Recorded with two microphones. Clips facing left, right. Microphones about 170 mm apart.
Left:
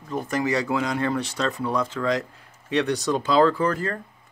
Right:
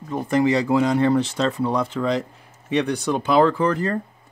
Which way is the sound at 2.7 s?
15° right (ahead or behind).